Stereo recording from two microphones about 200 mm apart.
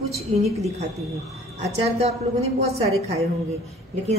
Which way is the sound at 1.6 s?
30° right (ahead or behind).